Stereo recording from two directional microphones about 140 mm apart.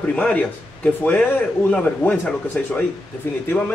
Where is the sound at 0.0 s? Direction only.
10° left (ahead or behind).